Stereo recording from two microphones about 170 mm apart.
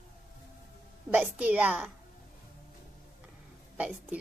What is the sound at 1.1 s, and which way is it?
Speech, 10° right (ahead or behind).